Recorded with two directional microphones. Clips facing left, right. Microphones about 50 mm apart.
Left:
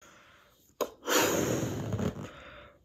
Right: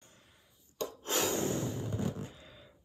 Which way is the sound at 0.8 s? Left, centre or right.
Left.